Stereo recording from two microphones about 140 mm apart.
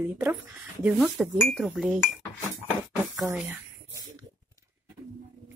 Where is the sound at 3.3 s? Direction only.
20° right (ahead or behind).